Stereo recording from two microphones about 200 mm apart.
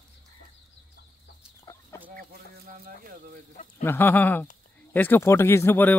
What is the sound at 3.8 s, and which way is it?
Speech, 10° left (ahead or behind).